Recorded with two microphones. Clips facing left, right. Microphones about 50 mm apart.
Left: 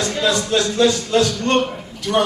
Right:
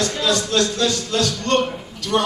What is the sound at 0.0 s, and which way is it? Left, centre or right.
A man's voice, centre.